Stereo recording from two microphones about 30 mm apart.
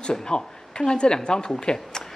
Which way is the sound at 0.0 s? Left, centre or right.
Left.